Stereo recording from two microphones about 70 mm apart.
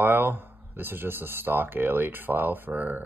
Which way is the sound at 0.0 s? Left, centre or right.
Right.